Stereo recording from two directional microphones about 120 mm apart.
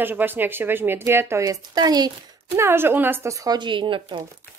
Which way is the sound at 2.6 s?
20° right (ahead or behind).